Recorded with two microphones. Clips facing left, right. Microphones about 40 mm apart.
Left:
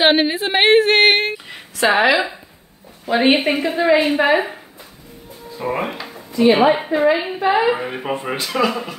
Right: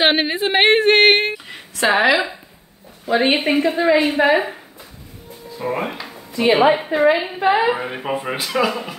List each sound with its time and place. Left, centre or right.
0.0 s a woman's voice: centre
5.6 s a woman's voice: centre
6.9 s a woman's voice: right
7.7 s a woman's voice: centre